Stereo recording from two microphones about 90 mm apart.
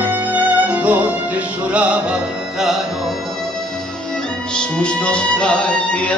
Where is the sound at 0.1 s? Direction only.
15° right (ahead or behind).